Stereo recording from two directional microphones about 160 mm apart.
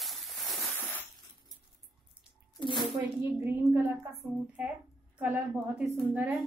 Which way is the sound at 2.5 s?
30° left (ahead or behind).